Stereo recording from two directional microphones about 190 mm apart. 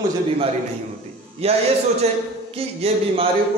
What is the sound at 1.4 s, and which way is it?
Speech, 30° right (ahead or behind).